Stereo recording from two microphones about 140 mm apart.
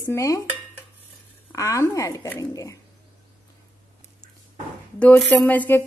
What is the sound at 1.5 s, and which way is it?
A woman's voice, 25° left (ahead or behind).